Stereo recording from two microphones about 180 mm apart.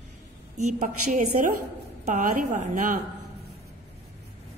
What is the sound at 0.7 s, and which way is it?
A woman's voice, 45° right (ahead or behind).